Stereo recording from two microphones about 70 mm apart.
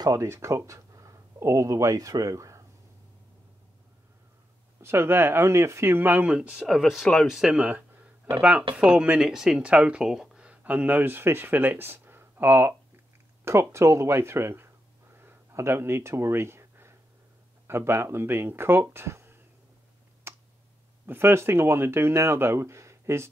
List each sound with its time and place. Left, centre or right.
0.2 s speech: right
4.8 s speech: right
6.3 s speech: centre
6.6 s speech: centre
7.6 s speech: right
15.1 s a sound: right
17.6 s speech: right
20.3 s tick: right
21.0 s speech: right